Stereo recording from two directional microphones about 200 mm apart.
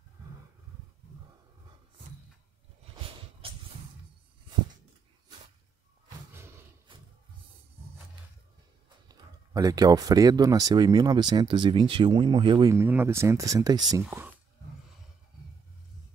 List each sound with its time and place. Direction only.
3.0 s a sound: 25° right (ahead or behind)
6.9 s music: 25° right (ahead or behind)
9.1 s speech: 20° right (ahead or behind)
12.7 s speech: 10° right (ahead or behind)